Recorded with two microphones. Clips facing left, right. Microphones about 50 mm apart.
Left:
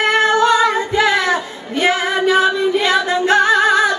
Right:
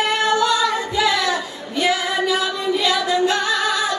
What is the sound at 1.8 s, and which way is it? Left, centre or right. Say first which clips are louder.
Female singing: left 4 dB; left.